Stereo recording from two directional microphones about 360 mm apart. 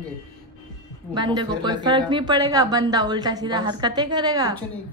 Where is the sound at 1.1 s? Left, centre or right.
Centre.